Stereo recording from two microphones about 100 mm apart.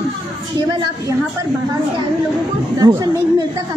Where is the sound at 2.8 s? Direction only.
40° right (ahead or behind).